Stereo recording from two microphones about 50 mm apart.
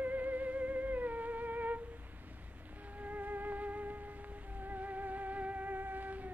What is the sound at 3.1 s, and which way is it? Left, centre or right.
Music, right.